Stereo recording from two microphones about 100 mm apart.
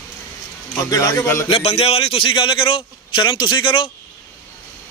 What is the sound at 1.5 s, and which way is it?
A man's voice, 70° left (ahead or behind).